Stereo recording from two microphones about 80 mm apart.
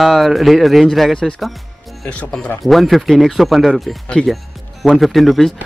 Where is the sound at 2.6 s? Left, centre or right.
Centre.